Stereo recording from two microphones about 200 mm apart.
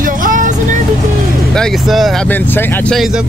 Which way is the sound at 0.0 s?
45° right (ahead or behind).